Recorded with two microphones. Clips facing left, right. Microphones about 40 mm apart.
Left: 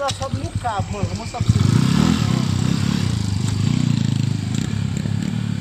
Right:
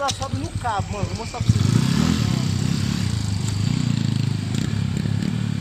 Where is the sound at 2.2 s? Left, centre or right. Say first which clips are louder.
Left 3 dB; left.